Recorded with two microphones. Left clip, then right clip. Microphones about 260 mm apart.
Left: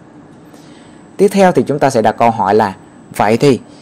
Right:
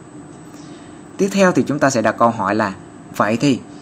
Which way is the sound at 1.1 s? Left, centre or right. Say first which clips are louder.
Left 6 dB; left.